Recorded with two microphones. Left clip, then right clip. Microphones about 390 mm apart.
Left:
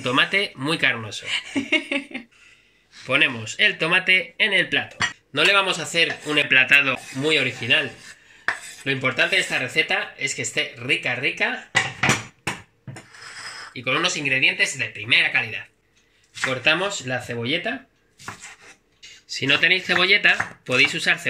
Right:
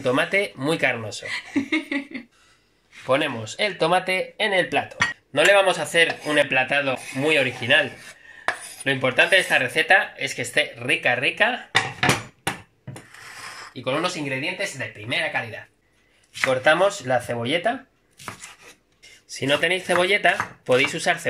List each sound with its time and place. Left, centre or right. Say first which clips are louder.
0.0 s speech: left 1 dB; centre
1.3 s speech: left 3 dB; centre
3.1 s speech: left 2 dB; centre
8.8 s speech: right 2 dB; right
13.7 s speech: left 2 dB; centre
17.1 s speech: right 3 dB; centre
19.0 s speech: left 2 dB; centre